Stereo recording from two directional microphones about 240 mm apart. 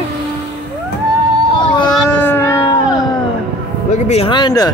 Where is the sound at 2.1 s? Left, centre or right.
Centre.